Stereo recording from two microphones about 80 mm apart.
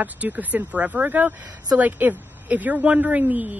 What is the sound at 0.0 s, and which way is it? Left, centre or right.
Speech, right.